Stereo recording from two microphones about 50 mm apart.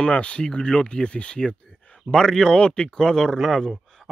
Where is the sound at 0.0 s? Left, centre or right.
Left.